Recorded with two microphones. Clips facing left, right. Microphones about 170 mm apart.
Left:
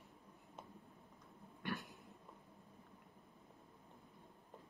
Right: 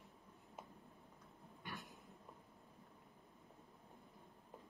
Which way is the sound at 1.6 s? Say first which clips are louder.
Left 8 dB; 80° left.